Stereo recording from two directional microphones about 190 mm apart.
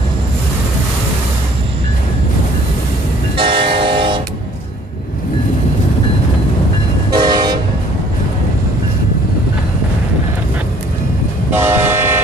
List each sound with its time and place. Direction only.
3.3 s train: 25° right (ahead or behind)
7.1 s train: 20° right (ahead or behind)
11.5 s train: 10° right (ahead or behind)